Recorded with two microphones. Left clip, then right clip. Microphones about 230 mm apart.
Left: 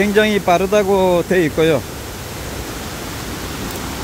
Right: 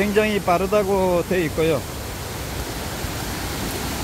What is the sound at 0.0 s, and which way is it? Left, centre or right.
Speech, left.